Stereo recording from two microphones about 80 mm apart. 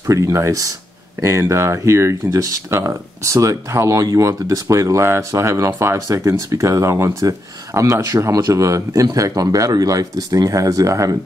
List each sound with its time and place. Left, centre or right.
0.0 s speech: right
1.2 s speech: right